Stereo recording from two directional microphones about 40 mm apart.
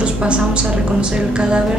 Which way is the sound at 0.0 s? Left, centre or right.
Right.